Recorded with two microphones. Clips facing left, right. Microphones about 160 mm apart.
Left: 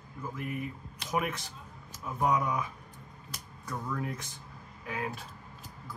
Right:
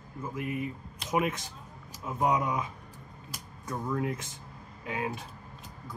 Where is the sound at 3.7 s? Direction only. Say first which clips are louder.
Right 4 dB; 20° right (ahead or behind).